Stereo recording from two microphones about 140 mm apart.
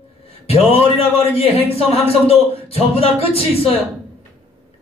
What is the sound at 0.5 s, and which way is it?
A man's voice, 45° left (ahead or behind).